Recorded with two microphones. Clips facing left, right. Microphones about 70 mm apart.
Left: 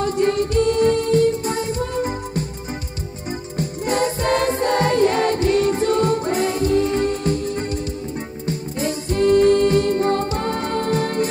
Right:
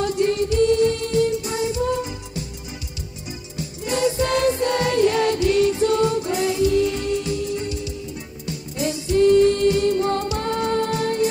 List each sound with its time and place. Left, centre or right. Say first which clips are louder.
0.2 s music: left 1 dB; left
3.5 s music: left 4 dB; left
8.5 s music: left 1 dB; left